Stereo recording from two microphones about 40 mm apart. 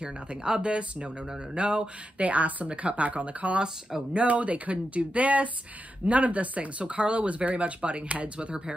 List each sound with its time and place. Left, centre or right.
0.0 s speech: right